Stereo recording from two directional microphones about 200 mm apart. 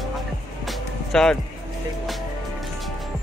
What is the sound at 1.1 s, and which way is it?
Speech, 5° left (ahead or behind).